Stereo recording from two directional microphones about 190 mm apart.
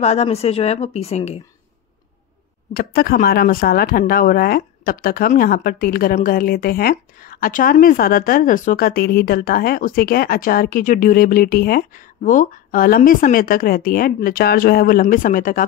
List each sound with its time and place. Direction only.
0.0 s speech: 35° left (ahead or behind)
2.7 s speech: 50° left (ahead or behind)